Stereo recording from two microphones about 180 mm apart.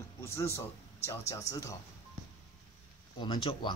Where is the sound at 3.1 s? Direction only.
25° left (ahead or behind).